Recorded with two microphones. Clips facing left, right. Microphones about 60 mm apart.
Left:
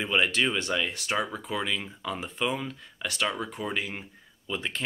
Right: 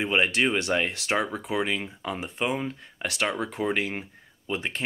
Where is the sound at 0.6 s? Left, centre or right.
Right.